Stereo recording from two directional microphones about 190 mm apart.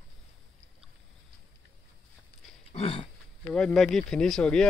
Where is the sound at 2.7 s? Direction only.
30° left (ahead or behind).